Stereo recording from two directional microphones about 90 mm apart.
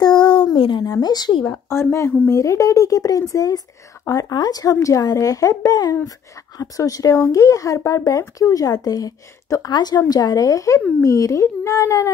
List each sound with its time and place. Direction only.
0.0 s a sound: 55° left (ahead or behind)
1.0 s speech: 50° left (ahead or behind)
1.7 s speech: 30° left (ahead or behind)